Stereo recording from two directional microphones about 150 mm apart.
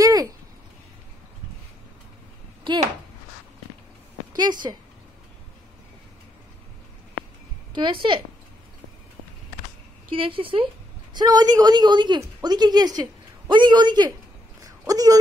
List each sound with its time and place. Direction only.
0.0 s a sound: 25° right (ahead or behind)
4.4 s a woman's voice: 30° right (ahead or behind)
7.7 s a woman's voice: 35° right (ahead or behind)
10.1 s a woman's voice: 35° right (ahead or behind)